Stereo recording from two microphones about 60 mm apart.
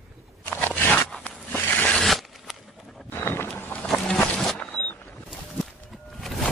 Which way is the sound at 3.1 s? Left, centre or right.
Left.